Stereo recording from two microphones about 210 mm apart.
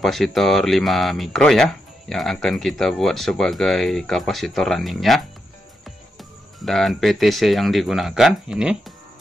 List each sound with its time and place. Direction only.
0.0 s speech: centre (ahead or behind)